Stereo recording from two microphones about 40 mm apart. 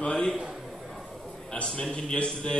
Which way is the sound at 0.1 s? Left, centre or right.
Left.